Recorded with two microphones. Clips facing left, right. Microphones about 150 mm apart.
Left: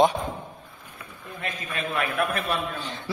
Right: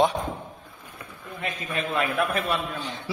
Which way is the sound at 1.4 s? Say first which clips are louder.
Right 2 dB; 20° right (ahead or behind).